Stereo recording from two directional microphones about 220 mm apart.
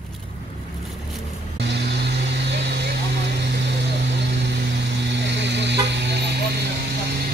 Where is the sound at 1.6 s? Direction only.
50° right (ahead or behind).